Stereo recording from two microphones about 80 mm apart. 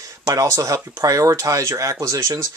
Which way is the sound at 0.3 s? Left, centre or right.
Right.